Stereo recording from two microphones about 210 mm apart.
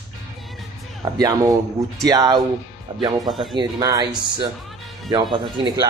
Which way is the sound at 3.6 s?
20° right (ahead or behind).